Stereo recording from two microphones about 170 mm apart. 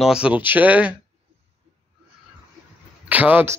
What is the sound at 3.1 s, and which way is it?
Speech, 10° right (ahead or behind).